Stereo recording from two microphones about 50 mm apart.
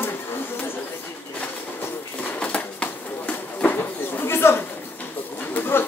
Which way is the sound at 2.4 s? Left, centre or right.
Left.